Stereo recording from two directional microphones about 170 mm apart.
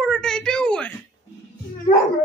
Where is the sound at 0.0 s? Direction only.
5° left (ahead or behind).